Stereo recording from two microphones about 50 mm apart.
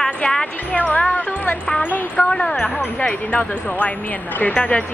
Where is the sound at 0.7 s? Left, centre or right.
Left.